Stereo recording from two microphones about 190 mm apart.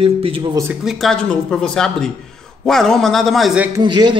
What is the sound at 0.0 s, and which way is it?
Speech, 30° right (ahead or behind).